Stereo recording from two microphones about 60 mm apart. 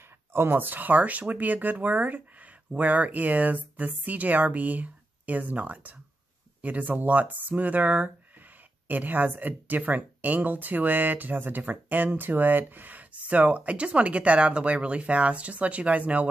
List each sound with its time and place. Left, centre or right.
0.3 s speech: right